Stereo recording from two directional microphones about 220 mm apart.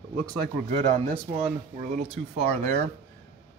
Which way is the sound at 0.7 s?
35° right (ahead or behind).